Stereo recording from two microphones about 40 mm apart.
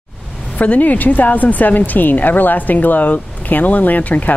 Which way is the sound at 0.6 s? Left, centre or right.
Left.